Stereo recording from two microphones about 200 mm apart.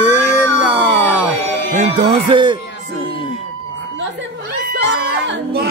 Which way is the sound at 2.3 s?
25° right (ahead or behind).